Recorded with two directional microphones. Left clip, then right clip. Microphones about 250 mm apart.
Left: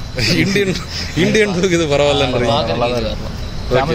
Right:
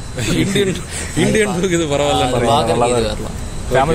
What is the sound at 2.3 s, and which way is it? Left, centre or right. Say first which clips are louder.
Speech: right 2 dB; right.